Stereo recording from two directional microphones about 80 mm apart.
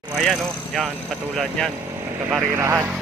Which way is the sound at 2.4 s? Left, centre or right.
Right.